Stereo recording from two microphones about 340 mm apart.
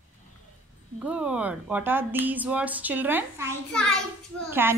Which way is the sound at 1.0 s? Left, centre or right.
Centre.